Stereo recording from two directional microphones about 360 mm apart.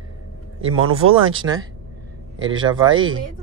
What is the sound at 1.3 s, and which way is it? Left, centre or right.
Speech, centre.